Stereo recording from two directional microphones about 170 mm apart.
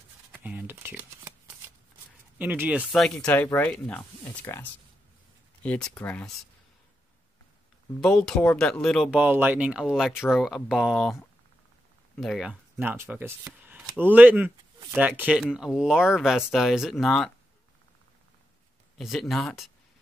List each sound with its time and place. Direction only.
0.3 s speech: 10° right (ahead or behind)
2.3 s speech: 10° right (ahead or behind); by 6.3 s 10° left (ahead or behind)
8.0 s speech: 5° left (ahead or behind)
12.2 s speech: centre (ahead or behind)
18.9 s speech: centre (ahead or behind)